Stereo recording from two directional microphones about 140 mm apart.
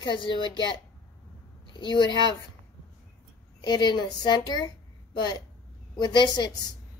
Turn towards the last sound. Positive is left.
turn(degrees=30)  # may be behind; listen again after turning